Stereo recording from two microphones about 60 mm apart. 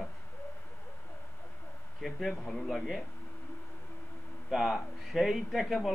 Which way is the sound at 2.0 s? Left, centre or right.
Centre.